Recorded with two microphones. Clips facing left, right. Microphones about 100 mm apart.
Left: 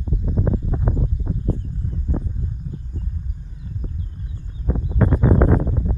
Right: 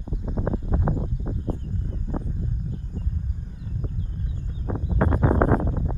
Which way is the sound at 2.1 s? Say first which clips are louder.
Left 2 dB; 20° right (ahead or behind).